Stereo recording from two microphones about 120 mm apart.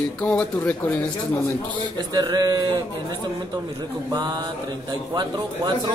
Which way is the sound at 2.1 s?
35° right (ahead or behind).